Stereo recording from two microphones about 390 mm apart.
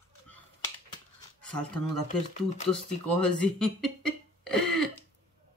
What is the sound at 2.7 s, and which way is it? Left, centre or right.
Speech, centre.